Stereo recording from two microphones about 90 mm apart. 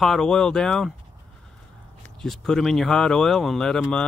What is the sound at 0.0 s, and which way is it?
Speech, 5° left (ahead or behind).